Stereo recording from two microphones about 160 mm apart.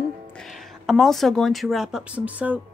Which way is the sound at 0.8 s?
Centre (ahead or behind).